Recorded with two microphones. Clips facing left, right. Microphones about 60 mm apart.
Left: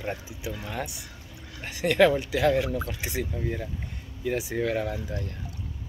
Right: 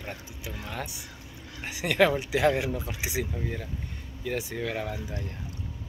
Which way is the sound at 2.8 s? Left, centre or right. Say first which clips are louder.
Even; centre.